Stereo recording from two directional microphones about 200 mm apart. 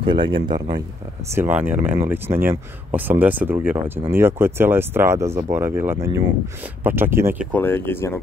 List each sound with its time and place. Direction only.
0.0 s speech: 25° right (ahead or behind)
1.3 s speech: 10° right (ahead or behind)
7.5 s speech: 10° left (ahead or behind)